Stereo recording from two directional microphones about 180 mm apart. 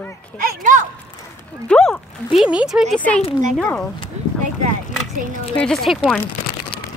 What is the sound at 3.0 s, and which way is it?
Speech, 10° left (ahead or behind).